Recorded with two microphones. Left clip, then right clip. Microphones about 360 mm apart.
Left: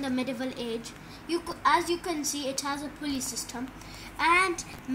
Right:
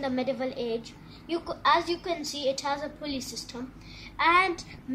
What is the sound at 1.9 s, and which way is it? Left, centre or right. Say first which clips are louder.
Speech: even; centre.